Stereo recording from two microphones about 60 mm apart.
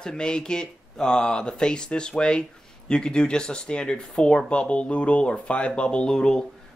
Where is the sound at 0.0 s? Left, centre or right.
Centre.